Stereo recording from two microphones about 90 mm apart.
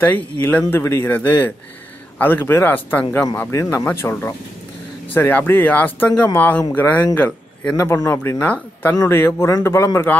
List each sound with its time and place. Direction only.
0.0 s a man's voice: 20° left (ahead or behind)